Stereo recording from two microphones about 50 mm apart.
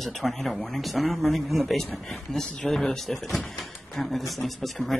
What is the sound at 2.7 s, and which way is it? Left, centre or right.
Speech, centre.